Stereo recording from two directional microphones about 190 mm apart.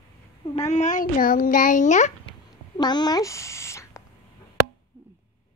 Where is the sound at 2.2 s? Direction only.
20° left (ahead or behind).